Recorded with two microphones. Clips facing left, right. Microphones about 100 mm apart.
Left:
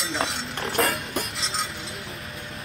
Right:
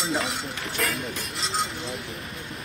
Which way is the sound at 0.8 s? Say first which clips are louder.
Left 5 dB; 40° left (ahead or behind).